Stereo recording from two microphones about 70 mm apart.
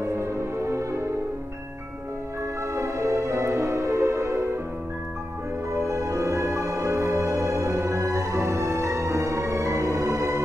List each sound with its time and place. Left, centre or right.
0.0 s music: right
2.7 s music: right
5.7 s music: right